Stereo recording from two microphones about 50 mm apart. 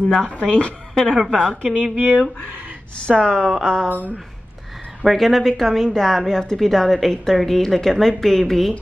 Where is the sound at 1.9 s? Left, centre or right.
Right.